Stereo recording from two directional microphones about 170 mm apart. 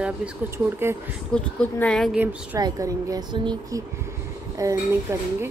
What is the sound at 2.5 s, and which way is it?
Speech, 20° right (ahead or behind).